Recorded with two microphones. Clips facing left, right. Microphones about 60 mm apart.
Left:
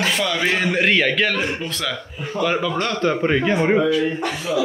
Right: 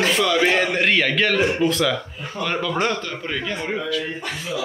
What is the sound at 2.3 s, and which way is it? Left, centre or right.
Speech, centre.